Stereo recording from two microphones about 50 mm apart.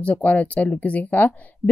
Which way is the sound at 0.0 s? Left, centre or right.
Left.